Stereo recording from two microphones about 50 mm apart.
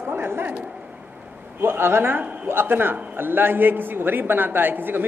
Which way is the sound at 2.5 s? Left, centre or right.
Right.